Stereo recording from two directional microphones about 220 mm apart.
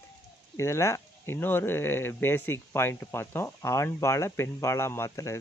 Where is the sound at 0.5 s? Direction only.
10° left (ahead or behind).